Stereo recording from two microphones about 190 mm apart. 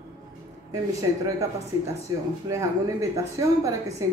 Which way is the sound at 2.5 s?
15° right (ahead or behind).